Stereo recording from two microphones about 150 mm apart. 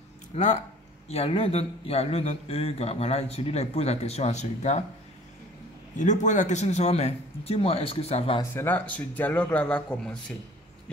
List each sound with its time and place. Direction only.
0.3 s speech: 55° left (ahead or behind)
1.0 s a man's voice: 40° left (ahead or behind)
5.9 s a man's voice: 55° left (ahead or behind)
8.4 s speech: 15° left (ahead or behind)